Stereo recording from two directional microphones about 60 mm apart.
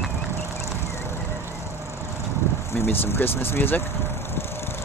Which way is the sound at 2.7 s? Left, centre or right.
Left.